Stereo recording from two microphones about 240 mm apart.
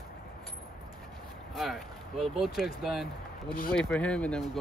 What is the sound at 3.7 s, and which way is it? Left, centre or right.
Speech, centre.